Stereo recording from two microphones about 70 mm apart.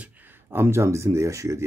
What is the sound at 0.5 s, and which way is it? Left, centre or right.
Speech, right.